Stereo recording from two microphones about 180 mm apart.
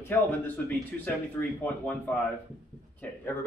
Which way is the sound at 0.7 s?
10° left (ahead or behind).